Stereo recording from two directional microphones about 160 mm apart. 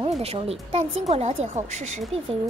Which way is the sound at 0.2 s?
40° right (ahead or behind).